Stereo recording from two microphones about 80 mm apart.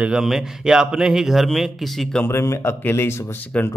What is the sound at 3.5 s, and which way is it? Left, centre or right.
Speech, centre.